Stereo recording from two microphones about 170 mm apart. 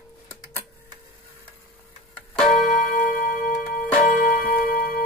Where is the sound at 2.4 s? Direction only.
50° left (ahead or behind).